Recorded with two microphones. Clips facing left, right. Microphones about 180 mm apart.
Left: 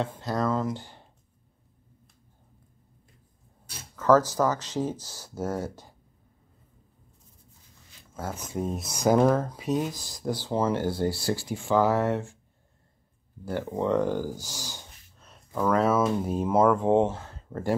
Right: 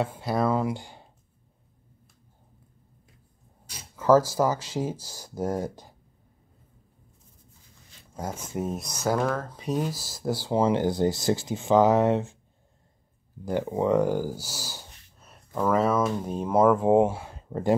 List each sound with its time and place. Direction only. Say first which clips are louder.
0.0 s speech: right 2 dB; 10° right (ahead or behind)
3.9 s speech: right 1 dB; 10° right (ahead or behind)
8.1 s speech: right 1 dB; 15° right (ahead or behind)
8.8 s speech: left 7 dB; 15° left (ahead or behind)
9.6 s speech: left 1 dB; centre (ahead or behind); by 12.4 s 20° right (ahead or behind)
13.5 s speech: right 3 dB; 10° right (ahead or behind)